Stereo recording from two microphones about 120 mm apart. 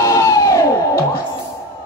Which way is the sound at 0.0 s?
30° left (ahead or behind).